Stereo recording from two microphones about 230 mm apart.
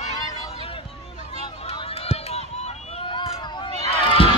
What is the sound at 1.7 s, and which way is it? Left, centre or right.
Run, left.